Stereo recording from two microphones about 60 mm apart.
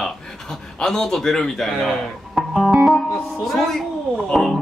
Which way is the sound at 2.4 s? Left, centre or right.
Centre.